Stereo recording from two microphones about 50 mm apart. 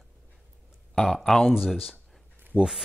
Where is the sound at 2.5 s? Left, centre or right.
Left.